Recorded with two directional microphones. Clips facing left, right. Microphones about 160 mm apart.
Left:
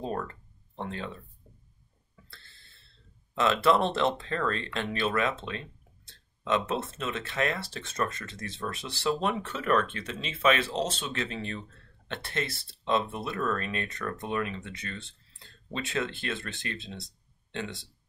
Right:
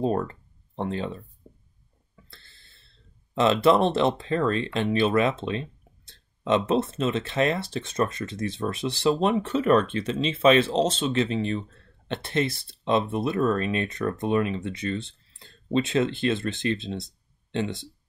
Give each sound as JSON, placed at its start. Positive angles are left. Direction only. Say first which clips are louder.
{"t": 0.0, "sound": "speech", "louder": "right 8 dB", "side_deg": -25}
{"t": 3.3, "sound": "speech", "louder": "right 5 dB", "side_deg": -20}